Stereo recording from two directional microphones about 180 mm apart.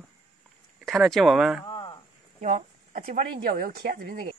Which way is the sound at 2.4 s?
40° right (ahead or behind).